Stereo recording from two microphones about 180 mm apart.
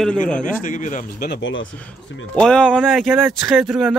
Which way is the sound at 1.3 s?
90° left.